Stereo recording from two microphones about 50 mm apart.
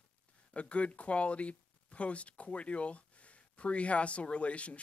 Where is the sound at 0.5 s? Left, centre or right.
Left.